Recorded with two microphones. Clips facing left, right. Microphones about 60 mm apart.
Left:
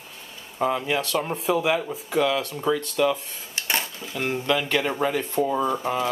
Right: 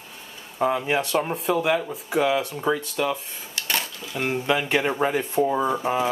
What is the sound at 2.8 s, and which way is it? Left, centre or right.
Speech, centre.